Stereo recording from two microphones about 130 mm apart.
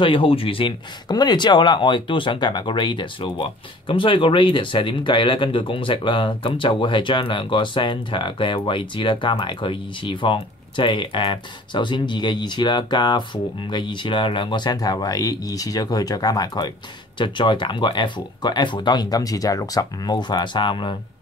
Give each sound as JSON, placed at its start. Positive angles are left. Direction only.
{"t": 0.0, "sound": "speech", "side_deg": 40}